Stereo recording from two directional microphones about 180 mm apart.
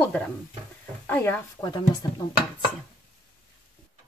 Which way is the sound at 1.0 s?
10° left (ahead or behind).